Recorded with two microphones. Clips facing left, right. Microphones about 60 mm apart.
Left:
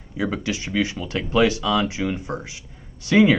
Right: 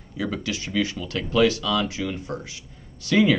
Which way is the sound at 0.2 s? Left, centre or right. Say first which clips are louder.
Left 3 dB; left.